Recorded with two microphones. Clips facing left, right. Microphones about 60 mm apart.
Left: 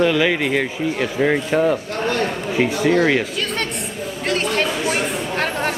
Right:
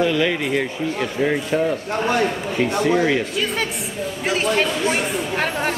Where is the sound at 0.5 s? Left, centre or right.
Centre.